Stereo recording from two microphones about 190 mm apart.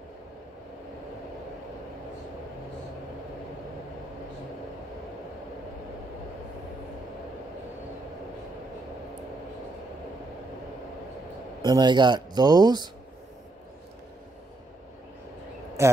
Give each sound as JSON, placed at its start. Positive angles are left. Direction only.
{"t": 11.6, "sound": "speech", "side_deg": -20}
{"t": 15.8, "sound": "speech", "side_deg": -15}